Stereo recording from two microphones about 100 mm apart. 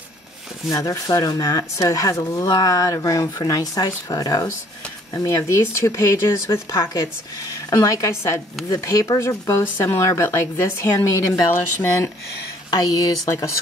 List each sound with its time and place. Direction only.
0.7 s speech: 35° left (ahead or behind)
12.7 s speech: 35° left (ahead or behind)